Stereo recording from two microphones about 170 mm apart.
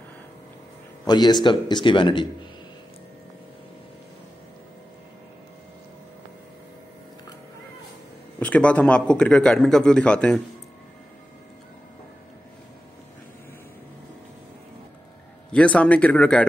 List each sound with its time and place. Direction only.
1.0 s speech: 25° left (ahead or behind)
8.4 s a man's voice: 10° left (ahead or behind)
15.5 s speech: 5° left (ahead or behind)